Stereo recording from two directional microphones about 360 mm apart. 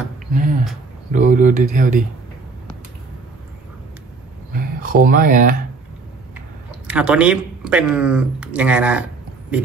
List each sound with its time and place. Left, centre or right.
0.3 s speech: right
4.6 s speech: right
6.9 s speech: centre